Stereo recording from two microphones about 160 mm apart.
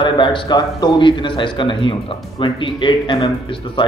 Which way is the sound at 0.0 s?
30° left (ahead or behind).